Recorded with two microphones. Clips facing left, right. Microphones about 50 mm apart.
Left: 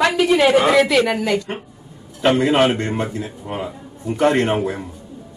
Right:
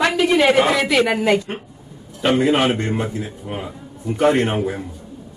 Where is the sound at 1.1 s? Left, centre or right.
Centre.